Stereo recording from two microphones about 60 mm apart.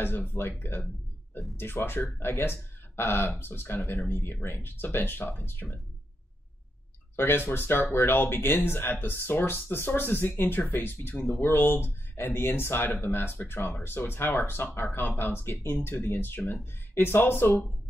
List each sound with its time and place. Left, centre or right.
0.0 s speech: left
7.2 s speech: left